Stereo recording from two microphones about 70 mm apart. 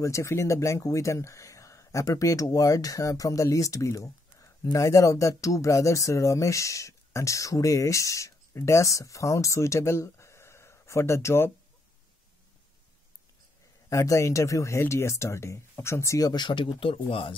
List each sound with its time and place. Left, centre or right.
0.0 s speech: left
13.8 s speech: left
16.2 s speech: left